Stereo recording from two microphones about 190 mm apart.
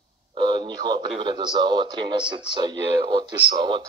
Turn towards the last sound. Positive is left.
turn(degrees=-25)  # may be behind; listen again after turning